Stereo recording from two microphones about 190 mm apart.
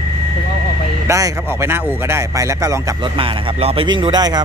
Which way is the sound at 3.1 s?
30° right (ahead or behind).